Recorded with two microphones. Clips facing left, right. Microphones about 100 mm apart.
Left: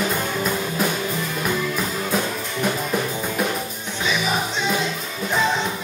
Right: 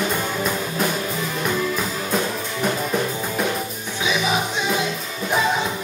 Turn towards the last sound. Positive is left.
turn(degrees=-5)  # may be behind; listen again after turning